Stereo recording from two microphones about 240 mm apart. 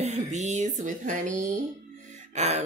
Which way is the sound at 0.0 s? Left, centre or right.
Right.